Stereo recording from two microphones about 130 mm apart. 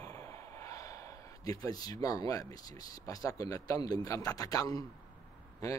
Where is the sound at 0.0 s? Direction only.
25° left (ahead or behind).